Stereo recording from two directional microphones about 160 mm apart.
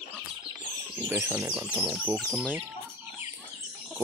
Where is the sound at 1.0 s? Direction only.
15° right (ahead or behind).